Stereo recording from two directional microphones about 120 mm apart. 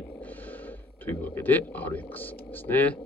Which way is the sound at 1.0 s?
15° left (ahead or behind).